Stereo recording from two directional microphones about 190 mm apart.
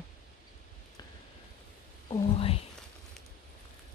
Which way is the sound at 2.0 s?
30° left (ahead or behind).